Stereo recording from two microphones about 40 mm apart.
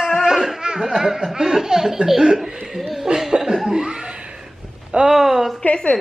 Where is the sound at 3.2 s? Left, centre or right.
Centre.